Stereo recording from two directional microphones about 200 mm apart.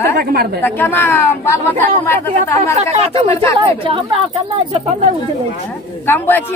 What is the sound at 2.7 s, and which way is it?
Speech, 35° right (ahead or behind).